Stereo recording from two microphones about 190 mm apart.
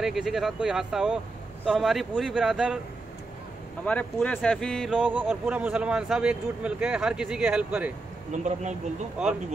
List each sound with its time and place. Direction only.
0.0 s a man's voice: centre (ahead or behind)
3.8 s a man's voice: 5° left (ahead or behind)
8.3 s speech: 40° right (ahead or behind)